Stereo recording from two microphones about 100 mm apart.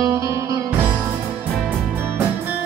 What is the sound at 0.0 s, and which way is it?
Music, 30° right (ahead or behind).